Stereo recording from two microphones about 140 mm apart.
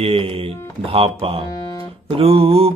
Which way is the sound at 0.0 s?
45° right (ahead or behind).